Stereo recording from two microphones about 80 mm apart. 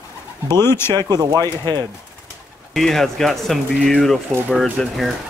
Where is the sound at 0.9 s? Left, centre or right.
Right.